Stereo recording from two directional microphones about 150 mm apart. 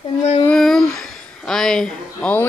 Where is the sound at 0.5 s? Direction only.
Centre (ahead or behind).